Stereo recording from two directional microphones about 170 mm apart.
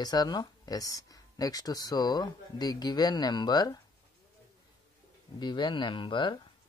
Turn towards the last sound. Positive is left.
turn(degrees=30)  # may be behind; listen again after turning